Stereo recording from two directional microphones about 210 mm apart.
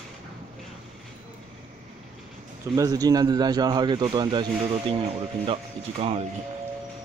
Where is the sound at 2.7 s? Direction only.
15° right (ahead or behind).